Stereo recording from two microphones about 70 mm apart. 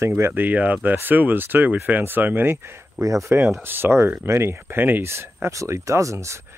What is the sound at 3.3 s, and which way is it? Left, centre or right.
Speech, right.